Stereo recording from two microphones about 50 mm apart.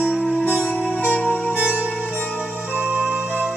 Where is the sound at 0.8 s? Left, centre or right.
Left.